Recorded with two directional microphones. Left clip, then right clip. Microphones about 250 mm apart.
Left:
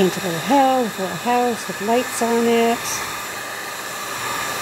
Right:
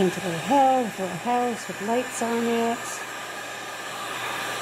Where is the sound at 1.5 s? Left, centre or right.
Left.